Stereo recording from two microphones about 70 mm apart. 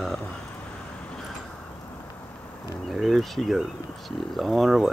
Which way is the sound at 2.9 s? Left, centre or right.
Centre.